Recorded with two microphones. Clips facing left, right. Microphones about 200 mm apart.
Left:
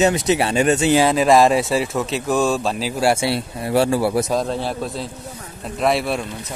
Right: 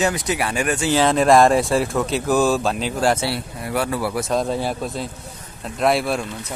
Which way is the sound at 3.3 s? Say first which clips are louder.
Left 5 dB; 25° left (ahead or behind).